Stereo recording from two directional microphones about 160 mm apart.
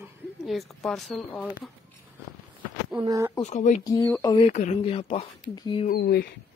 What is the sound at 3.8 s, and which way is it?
Speech, 20° left (ahead or behind).